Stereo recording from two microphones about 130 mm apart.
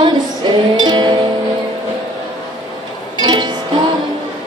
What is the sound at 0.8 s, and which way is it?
Music, 35° right (ahead or behind).